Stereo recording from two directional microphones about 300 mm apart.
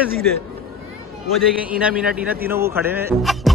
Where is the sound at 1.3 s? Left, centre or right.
Centre.